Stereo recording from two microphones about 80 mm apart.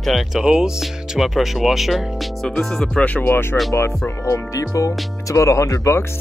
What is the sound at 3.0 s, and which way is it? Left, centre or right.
Speech, left.